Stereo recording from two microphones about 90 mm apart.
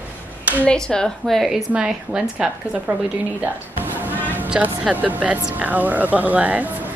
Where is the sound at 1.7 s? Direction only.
10° right (ahead or behind).